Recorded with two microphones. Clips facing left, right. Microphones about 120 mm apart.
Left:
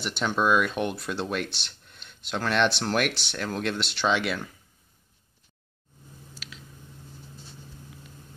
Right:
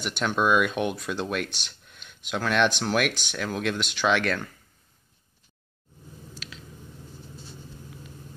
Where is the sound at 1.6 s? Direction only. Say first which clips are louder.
Even; 5° right (ahead or behind).